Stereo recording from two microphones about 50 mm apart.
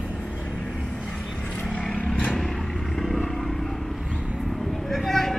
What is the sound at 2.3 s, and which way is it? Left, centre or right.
Vehicle, centre.